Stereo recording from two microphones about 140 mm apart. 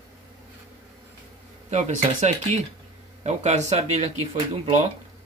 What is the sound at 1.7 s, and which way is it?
Speech, 55° right (ahead or behind).